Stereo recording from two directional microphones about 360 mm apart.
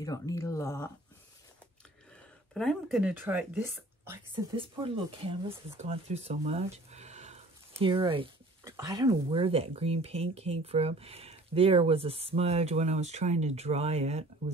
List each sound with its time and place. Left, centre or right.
0.0 s speech: centre
2.5 s speech: centre